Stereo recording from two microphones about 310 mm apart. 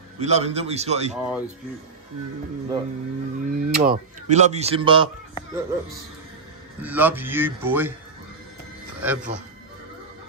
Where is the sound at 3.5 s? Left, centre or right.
Right.